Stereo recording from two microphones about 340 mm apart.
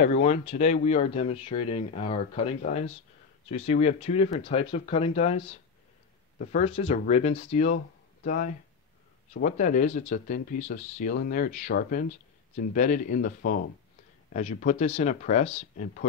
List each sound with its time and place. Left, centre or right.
0.0 s speech: centre